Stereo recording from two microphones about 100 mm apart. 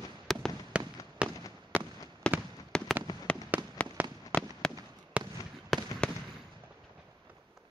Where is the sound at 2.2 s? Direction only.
10° left (ahead or behind).